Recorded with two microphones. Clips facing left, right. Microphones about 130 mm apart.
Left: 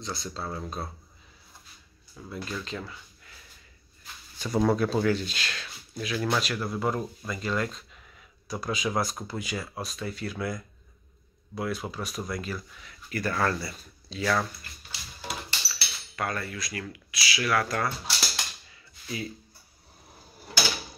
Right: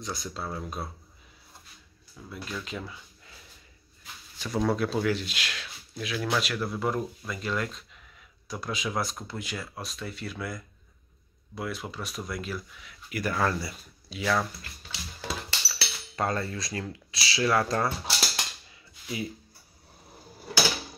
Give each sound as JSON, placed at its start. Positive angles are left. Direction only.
{"t": 0.0, "sound": "speech", "side_deg": -15}
{"t": 2.3, "sound": "speech", "side_deg": -5}
{"t": 4.4, "sound": "speech", "side_deg": 0}
{"t": 15.7, "sound": "speech", "side_deg": -25}